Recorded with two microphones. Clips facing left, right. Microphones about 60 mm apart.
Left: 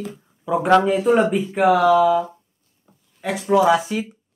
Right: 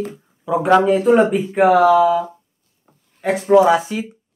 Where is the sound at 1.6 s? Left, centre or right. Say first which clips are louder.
Right 3 dB; right.